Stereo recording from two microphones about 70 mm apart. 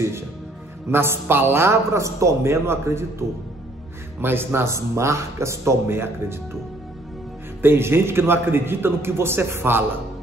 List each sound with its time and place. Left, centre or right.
0.8 s a man's voice: right
7.6 s a man's voice: right